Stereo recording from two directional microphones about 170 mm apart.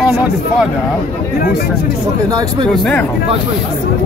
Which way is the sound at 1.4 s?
60° left (ahead or behind).